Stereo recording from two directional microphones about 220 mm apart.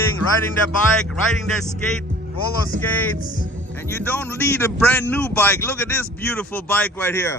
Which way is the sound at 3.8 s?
10° left (ahead or behind).